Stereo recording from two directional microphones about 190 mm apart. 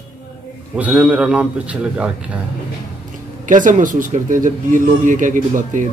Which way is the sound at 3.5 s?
45° right (ahead or behind).